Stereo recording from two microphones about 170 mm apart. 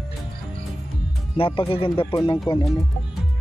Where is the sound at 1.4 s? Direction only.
30° left (ahead or behind).